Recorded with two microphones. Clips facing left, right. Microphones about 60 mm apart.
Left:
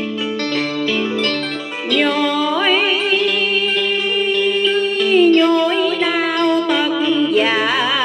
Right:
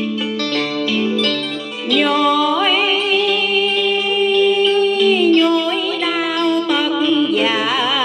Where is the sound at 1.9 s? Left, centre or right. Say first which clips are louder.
Right 2 dB; centre.